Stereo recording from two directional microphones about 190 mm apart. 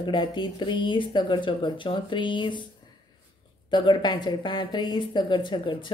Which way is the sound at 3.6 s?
25° left (ahead or behind).